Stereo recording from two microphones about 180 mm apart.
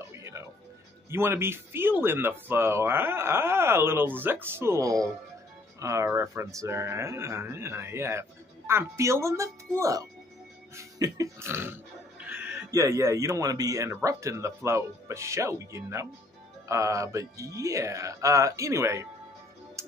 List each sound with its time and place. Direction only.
0.1 s music: 15° right (ahead or behind)
1.1 s speech: 15° right (ahead or behind)